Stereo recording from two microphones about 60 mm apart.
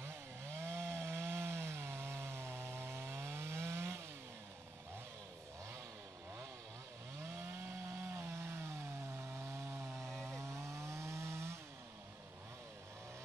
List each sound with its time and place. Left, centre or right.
0.0 s chainsaw: right
7.2 s chainsaw: right